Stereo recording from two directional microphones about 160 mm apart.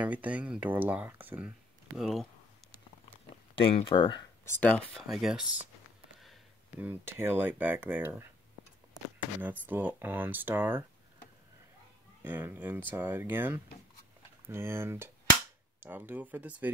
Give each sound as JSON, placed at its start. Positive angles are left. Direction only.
{"t": 0.0, "sound": "speech", "side_deg": -10}
{"t": 2.0, "sound": "speech", "side_deg": 0}
{"t": 3.6, "sound": "speech", "side_deg": 35}
{"t": 4.5, "sound": "speech", "side_deg": 10}
{"t": 6.8, "sound": "speech", "side_deg": -15}
{"t": 12.2, "sound": "speech", "side_deg": -10}